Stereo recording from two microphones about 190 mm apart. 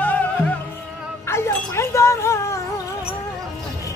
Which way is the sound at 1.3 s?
15° left (ahead or behind).